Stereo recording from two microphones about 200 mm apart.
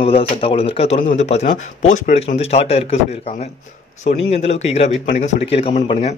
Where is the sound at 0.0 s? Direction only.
30° left (ahead or behind).